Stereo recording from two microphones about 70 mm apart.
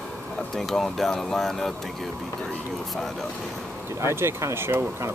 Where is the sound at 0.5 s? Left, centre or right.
Centre.